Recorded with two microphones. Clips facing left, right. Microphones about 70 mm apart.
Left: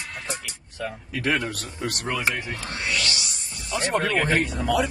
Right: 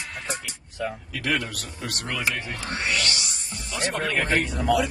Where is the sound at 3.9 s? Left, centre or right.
Left.